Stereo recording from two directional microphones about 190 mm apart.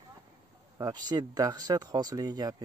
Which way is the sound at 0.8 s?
20° right (ahead or behind).